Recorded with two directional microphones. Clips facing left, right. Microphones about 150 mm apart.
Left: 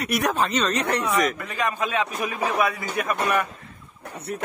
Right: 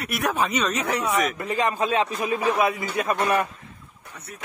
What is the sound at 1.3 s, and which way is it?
A man's voice, 30° right (ahead or behind).